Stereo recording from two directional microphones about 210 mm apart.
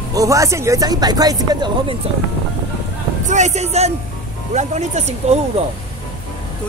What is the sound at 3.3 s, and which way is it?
Speech, 35° right (ahead or behind).